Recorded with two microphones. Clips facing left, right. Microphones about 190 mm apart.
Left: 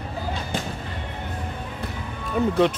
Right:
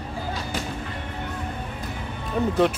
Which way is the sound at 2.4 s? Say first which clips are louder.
Left 2 dB; 5° left (ahead or behind).